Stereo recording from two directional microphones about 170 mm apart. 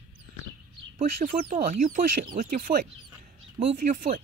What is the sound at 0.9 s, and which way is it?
Speech, 50° right (ahead or behind).